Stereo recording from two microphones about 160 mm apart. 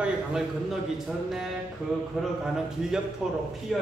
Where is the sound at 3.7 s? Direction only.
Centre (ahead or behind).